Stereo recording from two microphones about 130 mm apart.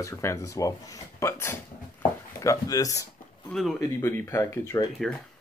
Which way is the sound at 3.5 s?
Centre (ahead or behind).